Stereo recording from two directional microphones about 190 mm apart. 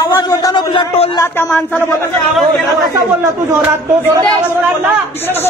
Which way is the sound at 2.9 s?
15° right (ahead or behind).